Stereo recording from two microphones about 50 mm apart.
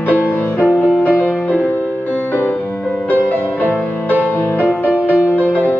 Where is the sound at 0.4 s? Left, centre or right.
Left.